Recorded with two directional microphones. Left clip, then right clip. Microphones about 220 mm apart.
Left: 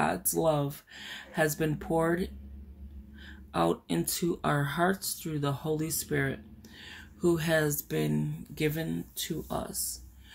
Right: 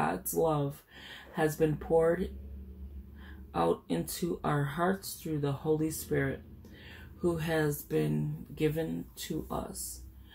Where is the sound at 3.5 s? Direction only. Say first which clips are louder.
Left 1 dB; 50° left (ahead or behind).